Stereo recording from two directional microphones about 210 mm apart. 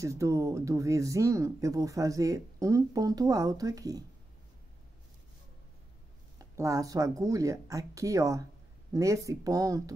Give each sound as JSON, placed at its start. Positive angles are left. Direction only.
{"t": 0.0, "sound": "speech", "side_deg": -15}
{"t": 6.3, "sound": "speech", "side_deg": -15}